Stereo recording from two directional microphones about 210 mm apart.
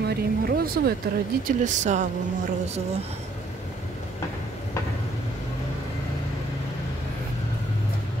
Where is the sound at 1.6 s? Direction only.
35° right (ahead or behind).